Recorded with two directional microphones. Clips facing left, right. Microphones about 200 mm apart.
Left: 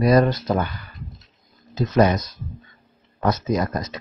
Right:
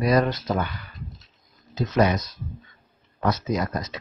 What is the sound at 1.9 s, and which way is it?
Speech, 45° left (ahead or behind).